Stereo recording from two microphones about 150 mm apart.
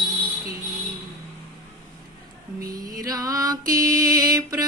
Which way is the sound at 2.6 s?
70° right (ahead or behind).